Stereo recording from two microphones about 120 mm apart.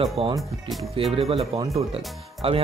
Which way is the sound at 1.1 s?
55° right (ahead or behind).